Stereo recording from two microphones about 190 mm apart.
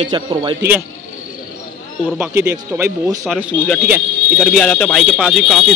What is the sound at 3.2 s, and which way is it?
Speech, centre (ahead or behind).